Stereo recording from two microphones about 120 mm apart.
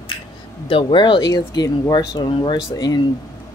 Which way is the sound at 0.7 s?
45° left (ahead or behind).